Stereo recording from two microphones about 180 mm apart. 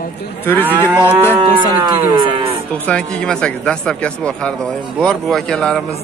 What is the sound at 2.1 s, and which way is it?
Livestock, 25° right (ahead or behind).